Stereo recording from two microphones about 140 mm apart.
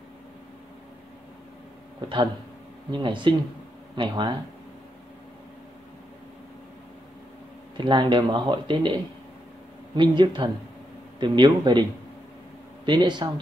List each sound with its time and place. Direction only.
2.9 s speech: 35° right (ahead or behind)
7.7 s speech: 35° right (ahead or behind)
12.8 s speech: 35° right (ahead or behind)